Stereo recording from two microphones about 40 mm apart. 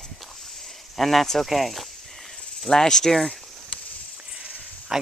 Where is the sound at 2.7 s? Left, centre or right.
Centre.